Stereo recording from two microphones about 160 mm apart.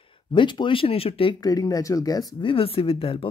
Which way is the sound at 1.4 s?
25° left (ahead or behind).